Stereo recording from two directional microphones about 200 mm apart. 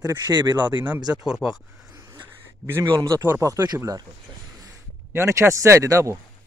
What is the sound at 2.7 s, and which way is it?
Speech, 15° right (ahead or behind).